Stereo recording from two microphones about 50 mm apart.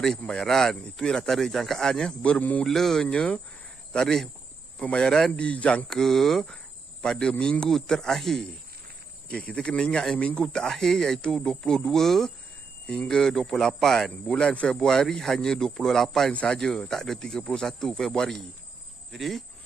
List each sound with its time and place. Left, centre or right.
0.3 s speech: centre
2.2 s speech: left
2.6 s speech: centre
5.4 s speech: left
5.9 s speech: centre
6.4 s cricket: centre
7.7 s speech: centre
9.3 s speech: left
10.4 s speech: centre
16.3 s speech: centre
19.1 s speech: centre